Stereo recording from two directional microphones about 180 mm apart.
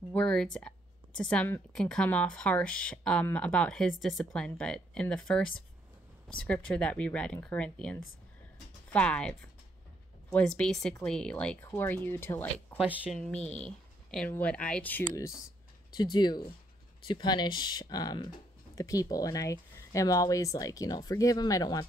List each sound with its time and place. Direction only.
0.1 s a woman's voice: 5° left (ahead or behind)
12.7 s speech: 10° right (ahead or behind)
13.5 s speech: 5° left (ahead or behind)
16.0 s speech: 25° left (ahead or behind)